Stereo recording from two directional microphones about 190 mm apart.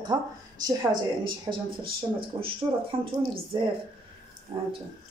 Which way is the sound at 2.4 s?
30° right (ahead or behind).